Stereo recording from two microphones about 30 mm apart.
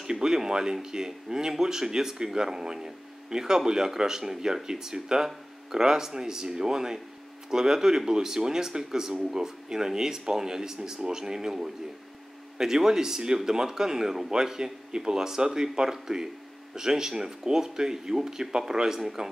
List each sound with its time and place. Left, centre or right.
0.0 s speech: right